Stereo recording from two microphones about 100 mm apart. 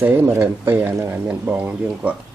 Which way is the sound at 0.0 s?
20° right (ahead or behind).